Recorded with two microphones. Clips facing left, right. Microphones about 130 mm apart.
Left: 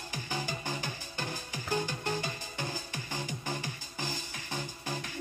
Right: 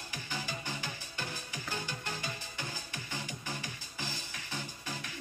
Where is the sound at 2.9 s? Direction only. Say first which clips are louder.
Left 4 dB; 40° left (ahead or behind).